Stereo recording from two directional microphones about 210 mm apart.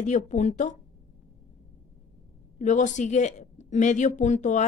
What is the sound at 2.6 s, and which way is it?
Speech, 35° left (ahead or behind).